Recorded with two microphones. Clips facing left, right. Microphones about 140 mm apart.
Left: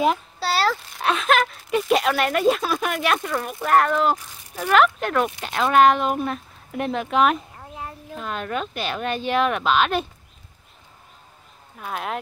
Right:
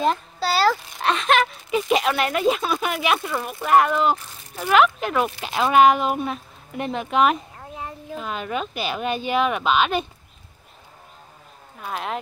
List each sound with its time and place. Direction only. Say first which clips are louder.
0.0 s speech: left 1 dB; 5° left (ahead or behind)
11.8 s speech: even; centre (ahead or behind)